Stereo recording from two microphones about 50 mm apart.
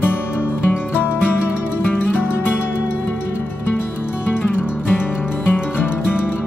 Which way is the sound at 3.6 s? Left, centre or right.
Left.